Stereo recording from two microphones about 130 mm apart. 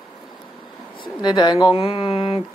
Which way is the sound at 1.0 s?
35° left (ahead or behind).